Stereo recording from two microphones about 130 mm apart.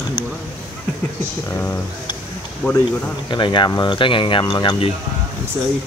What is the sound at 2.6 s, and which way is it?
Speech, centre (ahead or behind).